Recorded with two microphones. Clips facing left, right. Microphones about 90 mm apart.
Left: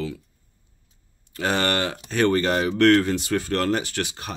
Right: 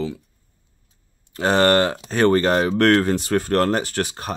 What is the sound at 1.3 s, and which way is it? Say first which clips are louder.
Speech: right 7 dB; 35° right (ahead or behind).